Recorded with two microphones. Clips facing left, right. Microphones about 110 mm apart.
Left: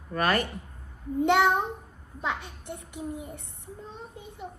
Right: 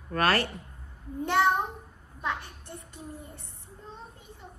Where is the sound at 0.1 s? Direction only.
15° left (ahead or behind).